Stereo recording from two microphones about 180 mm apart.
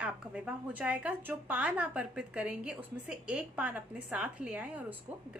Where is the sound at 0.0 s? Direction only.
10° right (ahead or behind).